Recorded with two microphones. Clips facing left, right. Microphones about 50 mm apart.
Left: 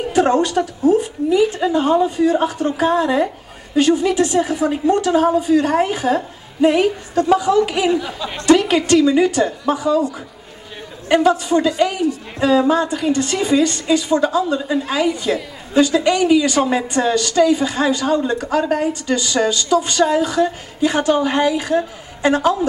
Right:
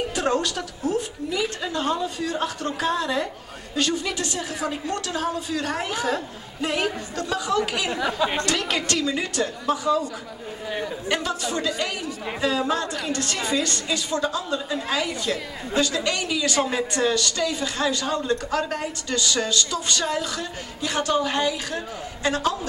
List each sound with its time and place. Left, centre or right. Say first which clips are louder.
0.1 s a woman's voice: left 9 dB; centre
11.1 s a man's voice: left 13 dB; left
11.4 s a woman's voice: left 10 dB; centre